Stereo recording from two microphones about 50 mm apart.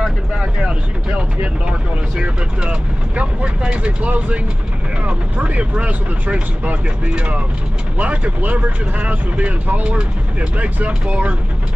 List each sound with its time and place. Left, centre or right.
0.7 s speech: right